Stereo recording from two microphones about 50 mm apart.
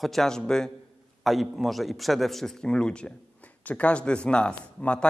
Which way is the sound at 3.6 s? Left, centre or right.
Left.